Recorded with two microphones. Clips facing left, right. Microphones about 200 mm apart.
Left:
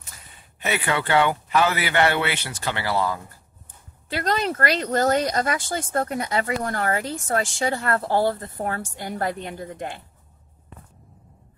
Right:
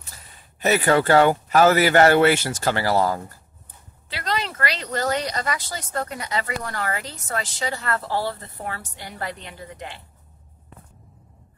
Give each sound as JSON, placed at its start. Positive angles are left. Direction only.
{"t": 0.6, "sound": "speech", "side_deg": -40}
{"t": 4.1, "sound": "speech", "side_deg": 45}